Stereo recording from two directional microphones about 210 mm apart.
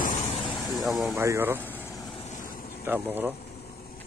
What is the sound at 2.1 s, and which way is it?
Vehicle, 35° left (ahead or behind).